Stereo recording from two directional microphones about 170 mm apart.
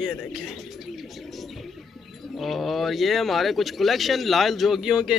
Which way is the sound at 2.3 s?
Centre (ahead or behind).